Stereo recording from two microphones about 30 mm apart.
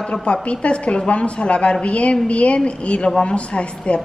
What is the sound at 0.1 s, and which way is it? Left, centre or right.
A woman's voice, left.